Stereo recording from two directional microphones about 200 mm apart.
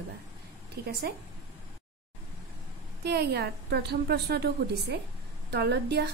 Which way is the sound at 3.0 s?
55° right (ahead or behind).